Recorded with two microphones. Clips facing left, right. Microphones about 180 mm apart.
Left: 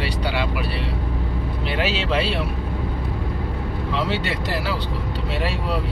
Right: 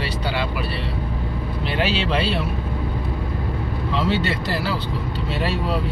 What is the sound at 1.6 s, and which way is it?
Speech, 5° left (ahead or behind).